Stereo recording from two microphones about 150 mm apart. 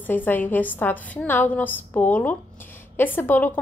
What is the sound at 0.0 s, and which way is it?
A woman's voice, 10° left (ahead or behind).